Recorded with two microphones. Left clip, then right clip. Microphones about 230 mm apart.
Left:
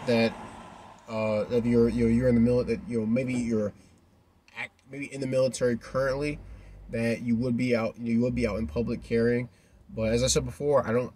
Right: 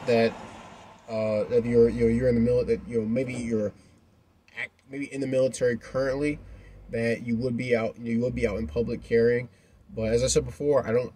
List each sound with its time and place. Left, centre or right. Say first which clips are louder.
1.0 s speech: right 2 dB; centre